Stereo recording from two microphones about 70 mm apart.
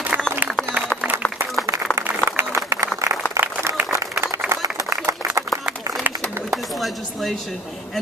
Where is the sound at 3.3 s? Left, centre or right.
Right.